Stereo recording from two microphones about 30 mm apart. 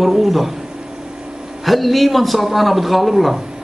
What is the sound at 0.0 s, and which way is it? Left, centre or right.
Speech, centre.